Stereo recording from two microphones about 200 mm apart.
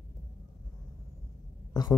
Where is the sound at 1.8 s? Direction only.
20° left (ahead or behind).